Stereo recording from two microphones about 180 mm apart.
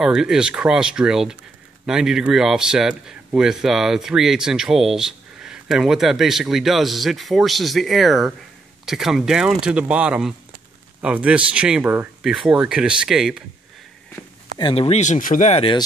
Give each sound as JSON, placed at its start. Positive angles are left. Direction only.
{"t": 0.0, "sound": "speech", "side_deg": -5}
{"t": 14.6, "sound": "speech", "side_deg": 30}